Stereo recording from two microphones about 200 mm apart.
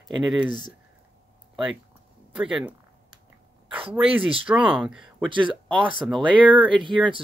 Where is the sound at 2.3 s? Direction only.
5° right (ahead or behind).